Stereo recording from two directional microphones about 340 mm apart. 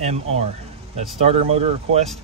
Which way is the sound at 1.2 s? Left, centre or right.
Centre.